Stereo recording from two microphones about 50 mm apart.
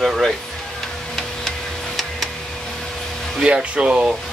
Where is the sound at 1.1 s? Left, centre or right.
Centre.